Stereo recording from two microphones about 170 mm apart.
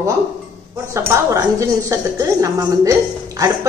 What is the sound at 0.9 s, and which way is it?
Speech, 15° right (ahead or behind).